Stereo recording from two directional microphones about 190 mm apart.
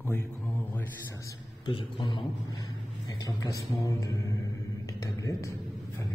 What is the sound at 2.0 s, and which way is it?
Speech, 25° left (ahead or behind).